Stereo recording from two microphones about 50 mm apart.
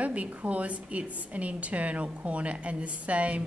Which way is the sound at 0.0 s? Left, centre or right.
Right.